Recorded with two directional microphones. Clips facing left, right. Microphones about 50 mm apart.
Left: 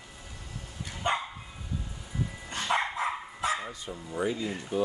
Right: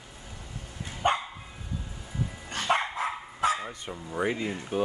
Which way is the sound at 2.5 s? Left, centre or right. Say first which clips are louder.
Right 3 dB; right.